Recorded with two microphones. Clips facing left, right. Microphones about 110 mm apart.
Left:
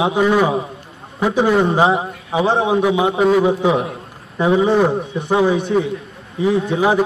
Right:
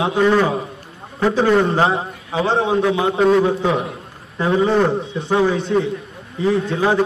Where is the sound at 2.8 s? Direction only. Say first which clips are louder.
Left 2 dB; 15° left (ahead or behind).